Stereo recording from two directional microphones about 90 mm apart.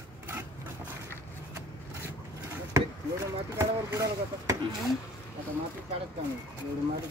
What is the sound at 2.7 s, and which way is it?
Chop, 30° right (ahead or behind).